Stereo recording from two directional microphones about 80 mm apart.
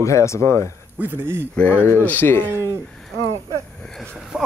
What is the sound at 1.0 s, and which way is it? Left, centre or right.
Speech, right.